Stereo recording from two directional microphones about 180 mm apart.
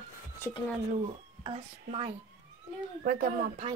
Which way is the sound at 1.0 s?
30° right (ahead or behind).